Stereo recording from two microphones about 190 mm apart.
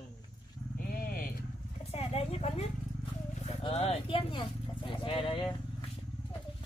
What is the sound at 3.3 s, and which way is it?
Vehicle, 35° left (ahead or behind).